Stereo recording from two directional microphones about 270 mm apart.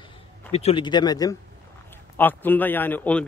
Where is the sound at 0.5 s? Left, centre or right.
Left.